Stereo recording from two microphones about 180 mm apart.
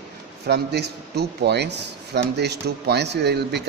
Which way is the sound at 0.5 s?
65° right (ahead or behind).